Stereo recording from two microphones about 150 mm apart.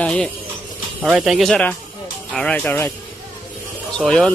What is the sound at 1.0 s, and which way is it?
Speech, 5° right (ahead or behind).